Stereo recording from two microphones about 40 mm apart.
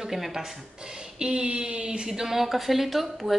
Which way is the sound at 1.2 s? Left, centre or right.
Right.